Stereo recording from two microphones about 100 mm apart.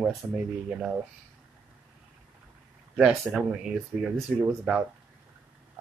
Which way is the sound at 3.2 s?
5° right (ahead or behind).